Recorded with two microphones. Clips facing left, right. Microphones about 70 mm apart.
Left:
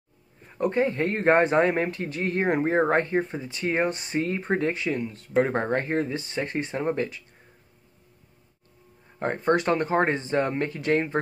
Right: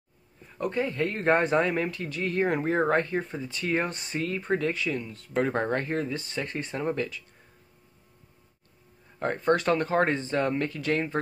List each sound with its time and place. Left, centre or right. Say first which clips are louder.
0.6 s speech: left 4 dB; left
9.2 s speech: left 1 dB; left